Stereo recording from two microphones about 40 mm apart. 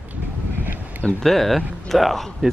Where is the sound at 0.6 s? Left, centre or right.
Right.